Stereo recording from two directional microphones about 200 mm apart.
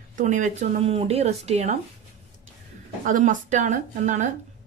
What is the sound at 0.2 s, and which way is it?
A woman's voice, 40° right (ahead or behind).